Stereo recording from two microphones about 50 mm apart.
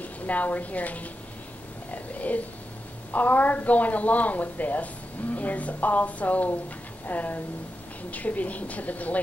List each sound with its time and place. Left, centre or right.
0.0 s a woman's voice: left
1.9 s a sound: left
3.1 s a woman's voice: left